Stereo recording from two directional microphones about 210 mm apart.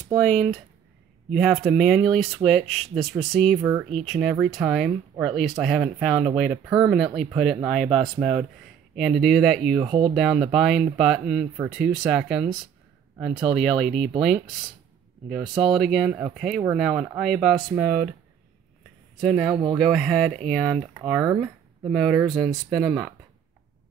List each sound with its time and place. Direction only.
0.2 s speech: centre (ahead or behind)
9.8 s speech: 20° right (ahead or behind)
10.1 s speech: centre (ahead or behind)
19.2 s speech: centre (ahead or behind)
19.5 s speech: 20° right (ahead or behind)
19.8 s speech: centre (ahead or behind)